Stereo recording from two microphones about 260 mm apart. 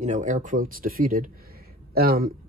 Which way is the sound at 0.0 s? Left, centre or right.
Right.